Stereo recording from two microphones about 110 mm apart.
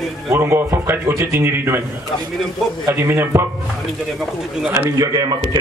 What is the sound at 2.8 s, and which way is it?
Speech, 25° right (ahead or behind).